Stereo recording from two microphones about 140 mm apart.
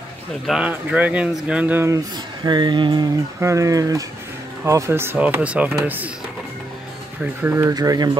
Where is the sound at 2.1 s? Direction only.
30° right (ahead or behind); by 6.1 s 10° right (ahead or behind).